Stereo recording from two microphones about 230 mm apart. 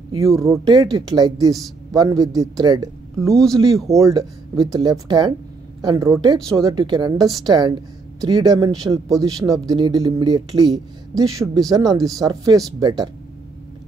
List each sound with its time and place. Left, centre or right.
0.2 s speech: centre